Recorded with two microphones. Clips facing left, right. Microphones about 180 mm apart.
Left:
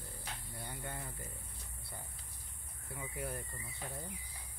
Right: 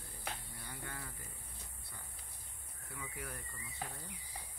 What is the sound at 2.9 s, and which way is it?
Speech, 25° left (ahead or behind).